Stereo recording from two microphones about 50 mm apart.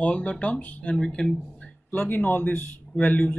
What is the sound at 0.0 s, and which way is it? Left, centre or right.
Speech, left.